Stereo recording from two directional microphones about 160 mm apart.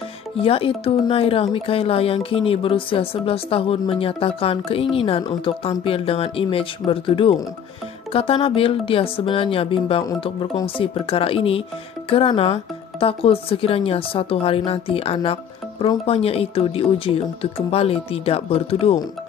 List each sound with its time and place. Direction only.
0.4 s speech: 35° left (ahead or behind)